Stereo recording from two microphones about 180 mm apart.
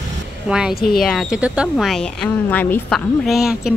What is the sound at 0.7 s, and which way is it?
Speech, 55° left (ahead or behind).